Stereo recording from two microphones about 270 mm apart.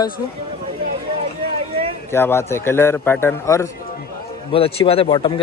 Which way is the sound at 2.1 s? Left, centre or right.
Centre.